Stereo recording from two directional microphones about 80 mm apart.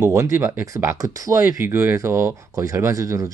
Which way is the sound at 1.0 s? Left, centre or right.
Right.